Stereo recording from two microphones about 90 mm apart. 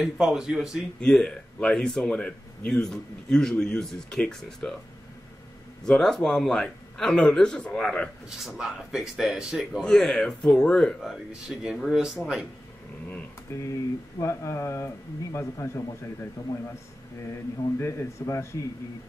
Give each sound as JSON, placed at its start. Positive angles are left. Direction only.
{"t": 0.0, "sound": "speech", "side_deg": -5}
{"t": 1.0, "sound": "speech", "side_deg": 10}
{"t": 5.9, "sound": "speech", "side_deg": 5}
{"t": 8.5, "sound": "speech", "side_deg": -5}
{"t": 9.8, "sound": "speech", "side_deg": 5}
{"t": 13.5, "sound": "a man's voice", "side_deg": 30}
{"t": 17.7, "sound": "a man's voice", "side_deg": 30}